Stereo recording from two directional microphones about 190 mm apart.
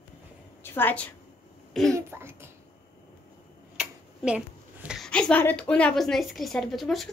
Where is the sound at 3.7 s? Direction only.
5° right (ahead or behind).